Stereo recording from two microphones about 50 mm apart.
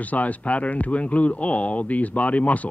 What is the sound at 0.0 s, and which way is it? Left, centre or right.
A man's voice, left.